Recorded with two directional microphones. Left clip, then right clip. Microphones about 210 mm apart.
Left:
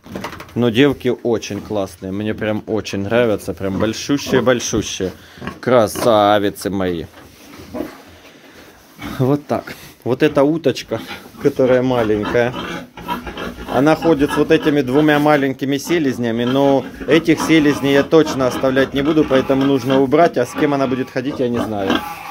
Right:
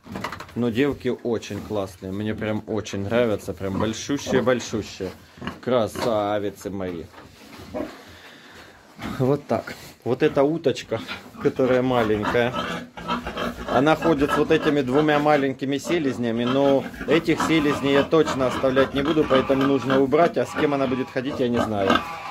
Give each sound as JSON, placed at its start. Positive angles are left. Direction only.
{"t": 0.6, "sound": "speech", "side_deg": 30}
{"t": 6.1, "sound": "speech", "side_deg": 40}
{"t": 9.1, "sound": "speech", "side_deg": 15}
{"t": 13.7, "sound": "speech", "side_deg": 10}